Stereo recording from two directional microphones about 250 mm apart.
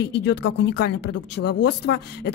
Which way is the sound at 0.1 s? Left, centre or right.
Left.